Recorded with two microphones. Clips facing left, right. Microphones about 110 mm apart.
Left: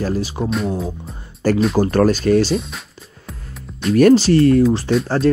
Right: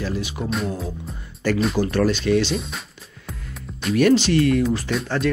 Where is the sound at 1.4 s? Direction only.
40° left (ahead or behind).